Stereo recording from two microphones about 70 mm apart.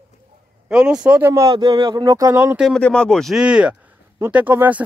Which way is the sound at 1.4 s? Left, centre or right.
Right.